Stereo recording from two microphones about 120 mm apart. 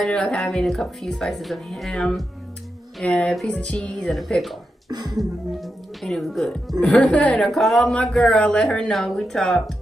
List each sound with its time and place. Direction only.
0.0 s speech: 5° left (ahead or behind)
4.8 s speech: 35° right (ahead or behind)
5.1 s speech: centre (ahead or behind)